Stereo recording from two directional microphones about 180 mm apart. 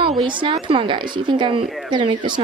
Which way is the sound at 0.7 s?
25° right (ahead or behind).